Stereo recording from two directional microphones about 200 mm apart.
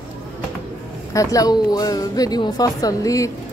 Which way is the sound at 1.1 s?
15° left (ahead or behind).